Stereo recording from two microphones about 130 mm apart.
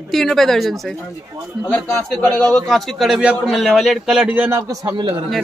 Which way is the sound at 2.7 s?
Centre (ahead or behind).